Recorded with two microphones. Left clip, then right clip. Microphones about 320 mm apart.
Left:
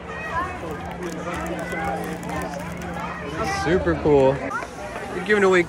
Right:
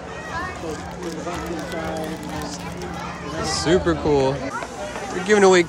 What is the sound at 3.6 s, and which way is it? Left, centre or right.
Speech, centre.